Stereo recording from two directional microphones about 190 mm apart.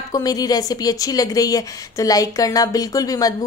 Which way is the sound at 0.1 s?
20° left (ahead or behind).